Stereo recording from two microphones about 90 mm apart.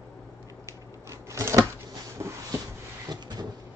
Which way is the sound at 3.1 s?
50° right (ahead or behind).